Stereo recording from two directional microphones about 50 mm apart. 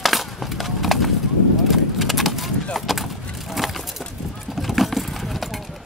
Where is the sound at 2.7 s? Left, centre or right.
Centre.